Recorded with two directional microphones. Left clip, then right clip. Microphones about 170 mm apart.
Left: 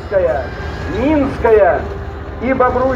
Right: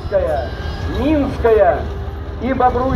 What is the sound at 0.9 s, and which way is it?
Speech, 50° left (ahead or behind).